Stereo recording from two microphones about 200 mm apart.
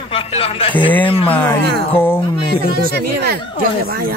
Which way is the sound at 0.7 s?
10° left (ahead or behind).